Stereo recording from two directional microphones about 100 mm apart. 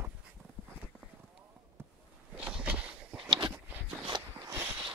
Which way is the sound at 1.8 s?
20° right (ahead or behind).